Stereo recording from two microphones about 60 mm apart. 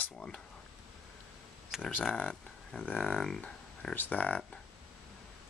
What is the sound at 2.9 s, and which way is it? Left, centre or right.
Speech, left.